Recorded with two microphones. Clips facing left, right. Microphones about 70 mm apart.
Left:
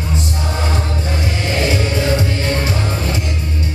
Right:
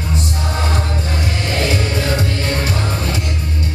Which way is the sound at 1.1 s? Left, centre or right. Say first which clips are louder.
Left 1 dB; left.